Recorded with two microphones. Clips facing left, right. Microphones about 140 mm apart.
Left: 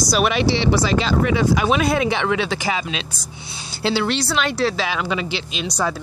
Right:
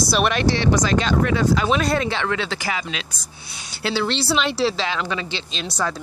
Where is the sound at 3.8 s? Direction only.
30° left (ahead or behind).